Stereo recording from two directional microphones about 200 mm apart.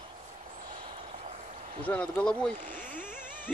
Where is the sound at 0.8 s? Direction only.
35° right (ahead or behind).